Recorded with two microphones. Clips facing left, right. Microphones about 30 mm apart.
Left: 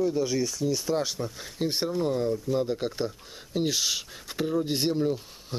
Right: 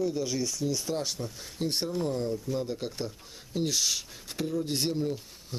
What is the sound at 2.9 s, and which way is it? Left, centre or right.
Speech, left.